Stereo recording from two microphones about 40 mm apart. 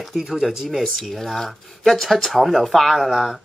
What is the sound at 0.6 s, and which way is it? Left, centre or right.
Speech, centre.